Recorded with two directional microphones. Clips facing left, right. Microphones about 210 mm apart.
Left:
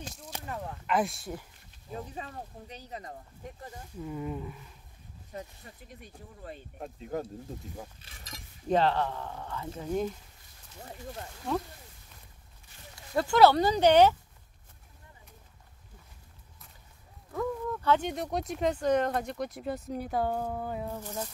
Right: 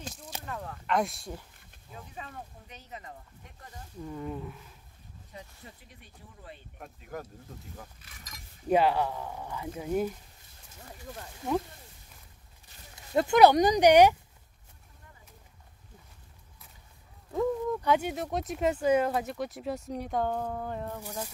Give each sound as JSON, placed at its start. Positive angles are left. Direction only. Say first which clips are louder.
{"t": 0.1, "sound": "a sound", "louder": "even", "side_deg": 0}
{"t": 0.8, "sound": "speech", "louder": "even", "side_deg": 0}
{"t": 1.9, "sound": "speech", "louder": "left 5 dB", "side_deg": 35}
{"t": 4.0, "sound": "speech", "louder": "left 1 dB", "side_deg": 5}
{"t": 5.3, "sound": "speech", "louder": "left 5 dB", "side_deg": 50}
{"t": 6.8, "sound": "speech", "louder": "left 6 dB", "side_deg": 25}
{"t": 8.6, "sound": "speech", "louder": "right 1 dB", "side_deg": -10}
{"t": 11.4, "sound": "speech", "louder": "right 2 dB", "side_deg": -20}
{"t": 13.1, "sound": "speech", "louder": "right 1 dB", "side_deg": -20}
{"t": 17.3, "sound": "speech", "louder": "right 4 dB", "side_deg": -20}